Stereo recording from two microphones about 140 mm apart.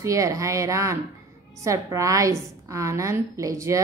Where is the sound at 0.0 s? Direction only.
20° right (ahead or behind).